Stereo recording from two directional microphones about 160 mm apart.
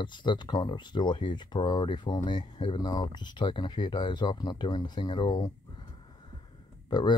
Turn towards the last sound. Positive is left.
turn(degrees=30)  # may be behind; listen again after turning